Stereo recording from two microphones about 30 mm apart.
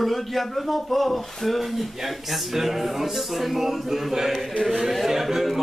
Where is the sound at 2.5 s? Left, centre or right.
Centre.